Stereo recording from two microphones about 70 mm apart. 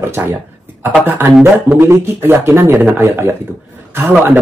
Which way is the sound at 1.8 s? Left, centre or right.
Right.